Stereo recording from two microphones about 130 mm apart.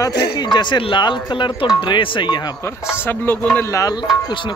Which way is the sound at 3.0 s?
15° left (ahead or behind).